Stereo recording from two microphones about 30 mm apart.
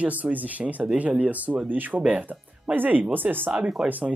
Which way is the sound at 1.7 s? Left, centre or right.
Right.